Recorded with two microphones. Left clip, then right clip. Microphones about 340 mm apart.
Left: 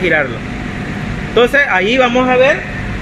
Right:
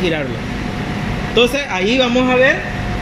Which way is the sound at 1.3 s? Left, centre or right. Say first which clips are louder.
Left 5 dB; left.